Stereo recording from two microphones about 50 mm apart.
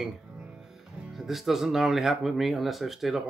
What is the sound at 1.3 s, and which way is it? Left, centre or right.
Speech, centre.